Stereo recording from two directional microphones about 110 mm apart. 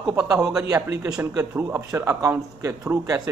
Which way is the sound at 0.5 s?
30° right (ahead or behind).